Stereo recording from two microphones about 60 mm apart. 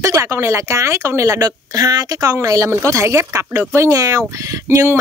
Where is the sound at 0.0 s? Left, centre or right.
Right.